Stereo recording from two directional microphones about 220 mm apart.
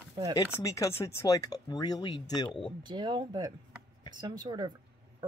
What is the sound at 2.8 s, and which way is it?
Speech, 20° right (ahead or behind).